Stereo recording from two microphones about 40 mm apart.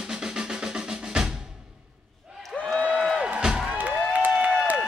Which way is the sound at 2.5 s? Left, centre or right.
Left.